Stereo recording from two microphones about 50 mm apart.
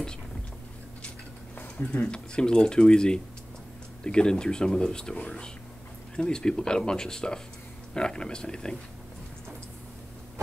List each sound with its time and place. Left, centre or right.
2.0 s speech: centre